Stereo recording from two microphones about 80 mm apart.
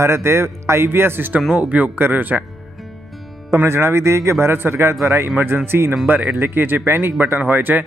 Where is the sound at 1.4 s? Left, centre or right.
Centre.